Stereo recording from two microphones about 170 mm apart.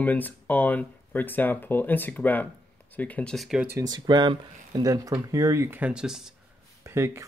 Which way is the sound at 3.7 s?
20° right (ahead or behind).